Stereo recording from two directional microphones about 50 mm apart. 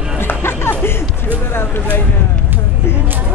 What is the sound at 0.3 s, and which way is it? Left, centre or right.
Music, left.